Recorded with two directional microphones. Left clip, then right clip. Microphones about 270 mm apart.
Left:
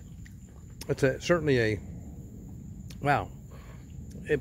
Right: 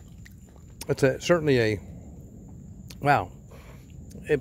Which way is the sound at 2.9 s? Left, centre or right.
Centre.